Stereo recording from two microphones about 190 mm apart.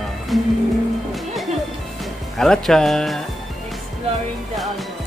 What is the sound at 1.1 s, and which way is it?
Music, centre (ahead or behind).